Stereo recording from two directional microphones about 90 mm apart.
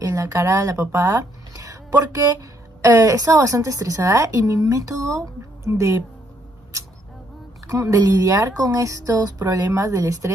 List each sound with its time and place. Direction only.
0.0 s a woman's voice: 40° right (ahead or behind)
7.6 s a woman's voice: 35° right (ahead or behind)